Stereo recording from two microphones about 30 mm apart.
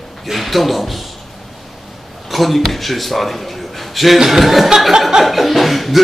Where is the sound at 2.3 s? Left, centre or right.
Centre.